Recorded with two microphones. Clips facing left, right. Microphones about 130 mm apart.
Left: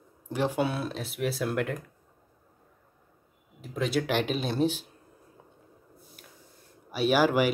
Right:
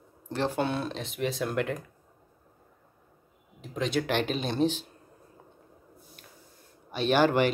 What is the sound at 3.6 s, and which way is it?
Speech, 5° left (ahead or behind).